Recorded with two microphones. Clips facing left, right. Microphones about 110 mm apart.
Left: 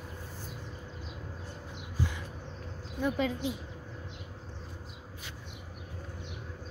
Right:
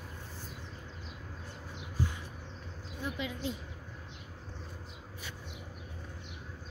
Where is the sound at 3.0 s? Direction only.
55° left (ahead or behind).